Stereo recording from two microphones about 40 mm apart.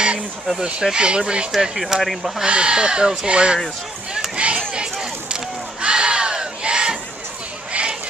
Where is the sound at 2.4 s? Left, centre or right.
Right.